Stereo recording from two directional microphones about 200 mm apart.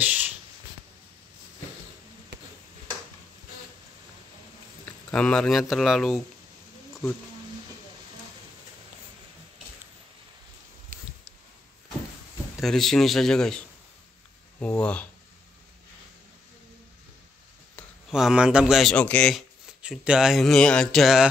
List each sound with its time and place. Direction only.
0.0 s a sound: 10° right (ahead or behind)
5.1 s speech: 5° left (ahead or behind)
10.9 s a sound: 45° right (ahead or behind)
12.5 s speech: centre (ahead or behind)
14.6 s speech: 5° left (ahead or behind)
17.7 s speech: centre (ahead or behind)